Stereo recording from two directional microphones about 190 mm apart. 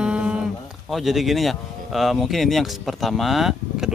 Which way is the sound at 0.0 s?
5° right (ahead or behind).